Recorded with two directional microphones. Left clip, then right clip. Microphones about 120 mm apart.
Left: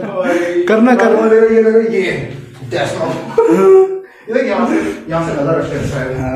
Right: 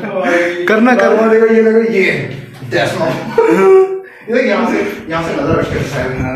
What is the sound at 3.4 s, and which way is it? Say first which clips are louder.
Speech: even; 25° left (ahead or behind).